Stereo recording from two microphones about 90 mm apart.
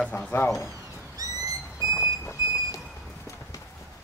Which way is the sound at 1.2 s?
40° right (ahead or behind).